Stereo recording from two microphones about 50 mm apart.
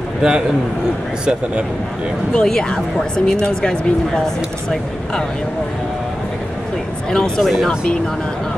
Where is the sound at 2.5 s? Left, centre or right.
Centre.